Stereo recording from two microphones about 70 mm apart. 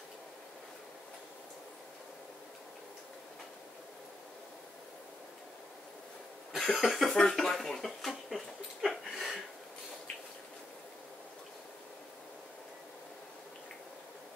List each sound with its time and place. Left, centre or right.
6.5 s speech: centre